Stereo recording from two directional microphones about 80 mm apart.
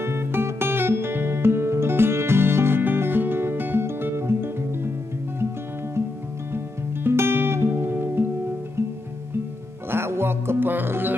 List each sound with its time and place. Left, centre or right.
0.0 s music: right
6.5 s music: right
9.8 s music: right